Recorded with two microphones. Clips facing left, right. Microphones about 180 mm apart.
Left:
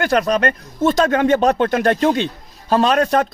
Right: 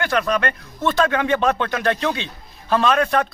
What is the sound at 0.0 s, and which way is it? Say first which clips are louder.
Speech: left 4 dB; 40° left (ahead or behind).